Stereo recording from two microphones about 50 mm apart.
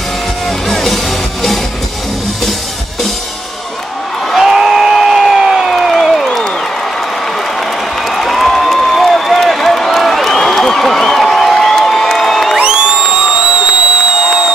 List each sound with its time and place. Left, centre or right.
0.5 s music: centre
4.4 s crowd: centre
7.3 s a sound: centre
12.5 s crowd: centre